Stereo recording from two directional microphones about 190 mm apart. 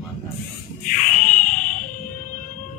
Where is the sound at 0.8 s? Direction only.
45° left (ahead or behind).